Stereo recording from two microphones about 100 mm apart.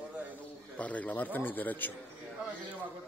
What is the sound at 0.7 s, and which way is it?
Speech, 15° left (ahead or behind).